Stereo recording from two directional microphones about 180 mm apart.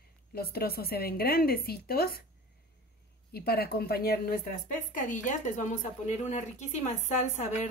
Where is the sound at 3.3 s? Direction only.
60° left (ahead or behind).